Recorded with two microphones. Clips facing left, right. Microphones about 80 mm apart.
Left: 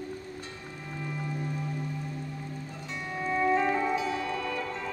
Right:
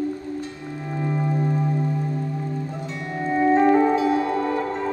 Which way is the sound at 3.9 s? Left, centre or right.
Right.